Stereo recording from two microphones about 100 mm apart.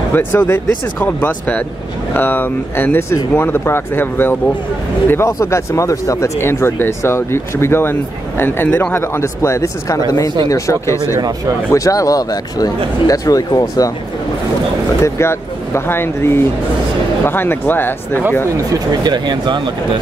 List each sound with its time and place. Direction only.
0.1 s speech: 25° left (ahead or behind)
11.1 s speech: 35° right (ahead or behind)
11.7 s a man's voice: 35° left (ahead or behind)
15.0 s speech: 25° left (ahead or behind)
18.7 s speech: 45° right (ahead or behind)